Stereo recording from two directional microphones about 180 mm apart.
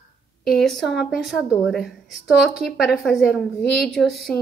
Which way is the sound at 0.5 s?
Centre (ahead or behind).